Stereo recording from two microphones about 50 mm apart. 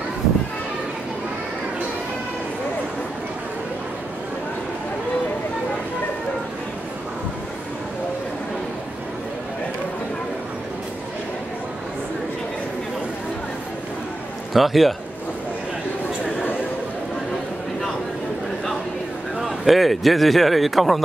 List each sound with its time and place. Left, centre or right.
14.5 s a man's voice: centre
19.4 s a man's voice: centre